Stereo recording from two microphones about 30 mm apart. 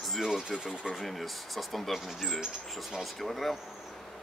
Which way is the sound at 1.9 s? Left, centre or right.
Centre.